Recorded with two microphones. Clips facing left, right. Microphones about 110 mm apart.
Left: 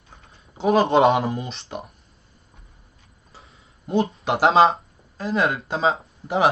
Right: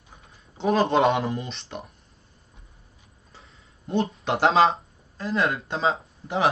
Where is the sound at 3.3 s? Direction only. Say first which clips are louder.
Left 3 dB; 5° left (ahead or behind).